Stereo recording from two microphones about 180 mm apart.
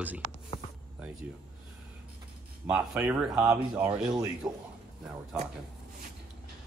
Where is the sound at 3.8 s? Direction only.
20° right (ahead or behind).